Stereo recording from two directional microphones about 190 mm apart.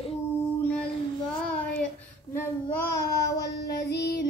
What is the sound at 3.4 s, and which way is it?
Female singing, 60° left (ahead or behind).